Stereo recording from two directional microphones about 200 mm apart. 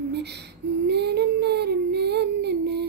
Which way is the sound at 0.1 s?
55° right (ahead or behind).